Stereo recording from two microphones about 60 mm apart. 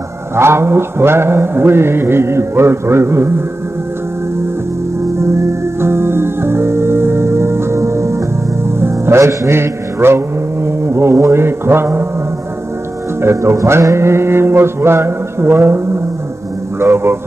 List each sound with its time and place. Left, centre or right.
0.4 s mantra: right
5.2 s music: right
8.6 s a man's voice: right
13.2 s mantra: right
16.8 s mantra: right